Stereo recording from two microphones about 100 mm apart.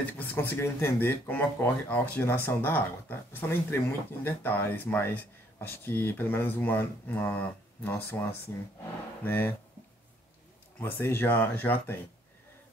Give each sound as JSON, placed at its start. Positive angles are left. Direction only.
{"t": 0.3, "sound": "speech", "side_deg": 25}
{"t": 10.8, "sound": "speech", "side_deg": 20}